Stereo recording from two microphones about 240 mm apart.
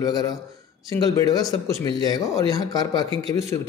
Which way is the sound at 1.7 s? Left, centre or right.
Right.